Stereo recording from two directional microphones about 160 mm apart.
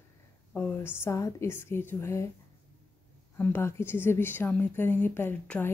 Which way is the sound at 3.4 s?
15° left (ahead or behind).